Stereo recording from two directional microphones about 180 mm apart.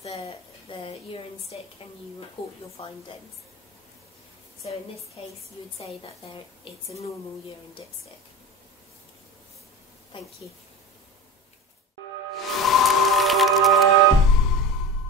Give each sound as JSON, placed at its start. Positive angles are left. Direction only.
{"t": 0.0, "sound": "a woman's voice", "side_deg": 30}
{"t": 2.8, "sound": "a woman's voice", "side_deg": 30}
{"t": 5.2, "sound": "a woman's voice", "side_deg": 30}
{"t": 10.1, "sound": "a woman's voice", "side_deg": 30}
{"t": 12.4, "sound": "music", "side_deg": 0}